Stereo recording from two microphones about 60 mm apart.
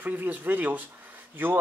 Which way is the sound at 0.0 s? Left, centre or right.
Right.